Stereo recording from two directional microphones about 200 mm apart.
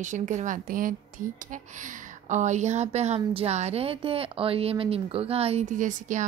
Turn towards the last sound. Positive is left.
turn(degrees=-40)  # may be behind; listen again after turning